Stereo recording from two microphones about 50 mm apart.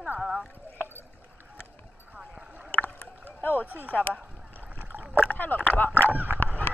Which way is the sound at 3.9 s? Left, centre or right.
Left.